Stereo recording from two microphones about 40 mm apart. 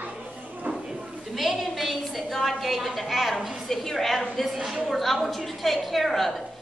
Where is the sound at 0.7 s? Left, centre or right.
Right.